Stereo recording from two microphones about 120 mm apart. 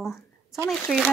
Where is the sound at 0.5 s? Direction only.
20° left (ahead or behind).